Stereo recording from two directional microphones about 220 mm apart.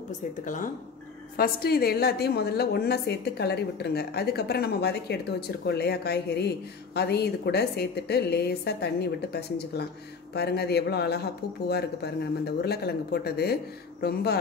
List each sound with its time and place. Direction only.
1.3 s a woman's voice: 45° left (ahead or behind)